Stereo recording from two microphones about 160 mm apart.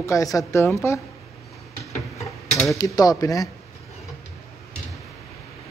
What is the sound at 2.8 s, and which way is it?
Speech, 25° left (ahead or behind).